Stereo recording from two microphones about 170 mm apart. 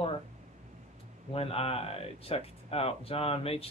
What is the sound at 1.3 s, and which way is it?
Speech, 35° left (ahead or behind).